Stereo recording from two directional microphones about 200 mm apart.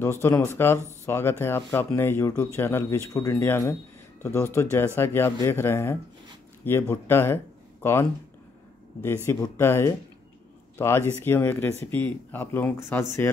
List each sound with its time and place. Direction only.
0.0 s speech: 10° left (ahead or behind)